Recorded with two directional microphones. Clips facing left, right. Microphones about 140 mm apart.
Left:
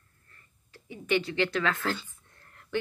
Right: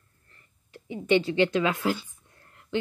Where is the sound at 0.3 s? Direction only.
20° right (ahead or behind).